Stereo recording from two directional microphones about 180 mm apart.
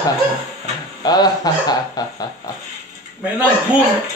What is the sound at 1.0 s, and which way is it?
Speech, 20° left (ahead or behind).